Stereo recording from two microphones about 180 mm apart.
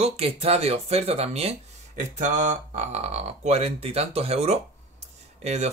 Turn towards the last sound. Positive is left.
turn(degrees=-40)  # may be behind; listen again after turning